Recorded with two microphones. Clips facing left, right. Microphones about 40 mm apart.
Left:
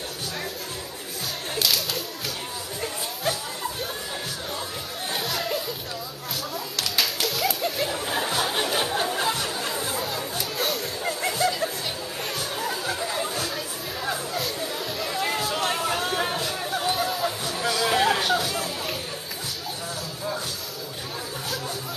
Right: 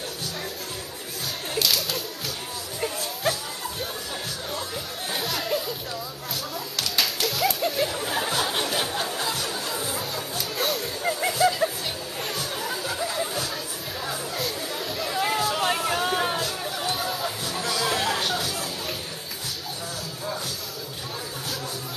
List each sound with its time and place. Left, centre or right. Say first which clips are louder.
1.5 s whip: even; centre
3.3 s music: right 1 dB; centre
5.1 s music: right 1 dB; centre
6.8 s music: even; centre
9.9 s a sound: left 2 dB; centre
12.4 s chatter: left 2 dB; centre
14.0 s music: left 2 dB; centre